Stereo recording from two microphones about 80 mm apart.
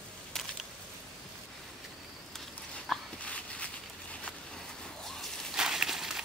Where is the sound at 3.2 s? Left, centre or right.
Centre.